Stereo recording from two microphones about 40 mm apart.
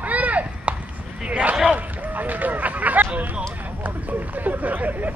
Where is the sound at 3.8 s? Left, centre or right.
Right.